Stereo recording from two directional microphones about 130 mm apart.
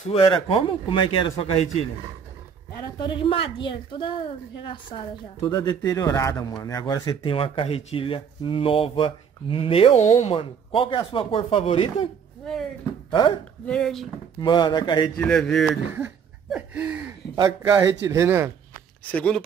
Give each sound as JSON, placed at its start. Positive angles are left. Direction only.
{"t": 0.5, "sound": "a woman's voice", "side_deg": 45}
{"t": 3.0, "sound": "a woman's voice", "side_deg": 40}
{"t": 5.4, "sound": "speech", "side_deg": 20}
{"t": 9.9, "sound": "speech", "side_deg": 65}
{"t": 10.3, "sound": "speech", "side_deg": 40}
{"t": 12.4, "sound": "speech", "side_deg": 0}
{"t": 13.7, "sound": "speech", "side_deg": 5}
{"t": 14.4, "sound": "a woman's voice", "side_deg": 35}
{"t": 15.1, "sound": "speech", "side_deg": 5}
{"t": 16.4, "sound": "a sound", "side_deg": -10}
{"t": 17.4, "sound": "speech", "side_deg": -25}
{"t": 18.7, "sound": "a sound", "side_deg": 10}